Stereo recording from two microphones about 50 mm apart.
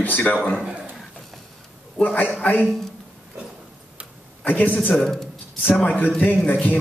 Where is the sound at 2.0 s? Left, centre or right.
Left.